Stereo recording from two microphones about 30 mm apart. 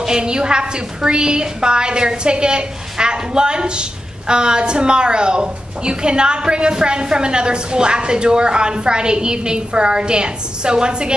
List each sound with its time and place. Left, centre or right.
0.0 s a woman's voice: right